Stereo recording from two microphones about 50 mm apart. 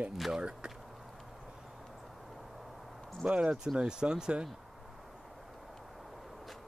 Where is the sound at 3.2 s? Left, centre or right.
Right.